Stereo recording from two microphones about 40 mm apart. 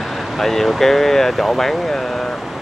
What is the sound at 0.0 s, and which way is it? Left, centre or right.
Speech, centre.